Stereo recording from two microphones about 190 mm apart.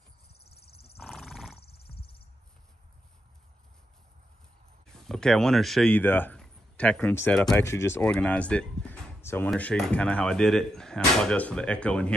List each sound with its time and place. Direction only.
1.0 s roar: centre (ahead or behind)
1.9 s a sound: 30° left (ahead or behind)
5.0 s a man's voice: centre (ahead or behind)